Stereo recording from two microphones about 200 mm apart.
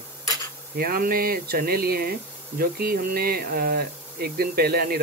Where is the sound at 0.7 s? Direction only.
45° right (ahead or behind).